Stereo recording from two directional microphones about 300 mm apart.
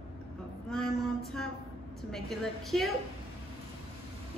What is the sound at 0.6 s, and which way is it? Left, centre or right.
Speech, centre.